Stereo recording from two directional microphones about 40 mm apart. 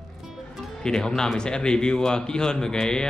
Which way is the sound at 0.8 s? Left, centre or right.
Centre.